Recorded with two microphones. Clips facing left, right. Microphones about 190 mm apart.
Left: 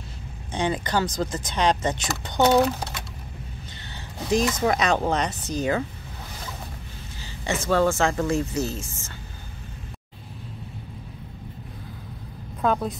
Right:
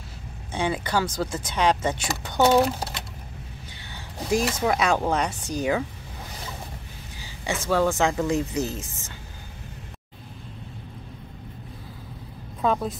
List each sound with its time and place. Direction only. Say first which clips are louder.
0.5 s speech: left 1 dB; 10° right (ahead or behind)
4.3 s speech: left 1 dB; 10° right (ahead or behind)
7.2 s speech: left 2 dB; 10° right (ahead or behind)
12.6 s a woman's voice: even; centre (ahead or behind)